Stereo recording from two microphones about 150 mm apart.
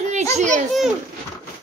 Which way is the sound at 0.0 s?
50° right (ahead or behind).